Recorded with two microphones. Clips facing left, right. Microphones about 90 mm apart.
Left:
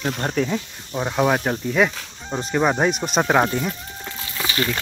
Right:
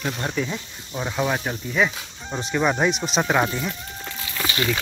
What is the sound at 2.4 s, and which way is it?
Speech, 35° left (ahead or behind).